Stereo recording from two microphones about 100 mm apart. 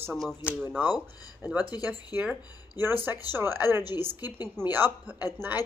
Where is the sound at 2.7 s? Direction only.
20° right (ahead or behind).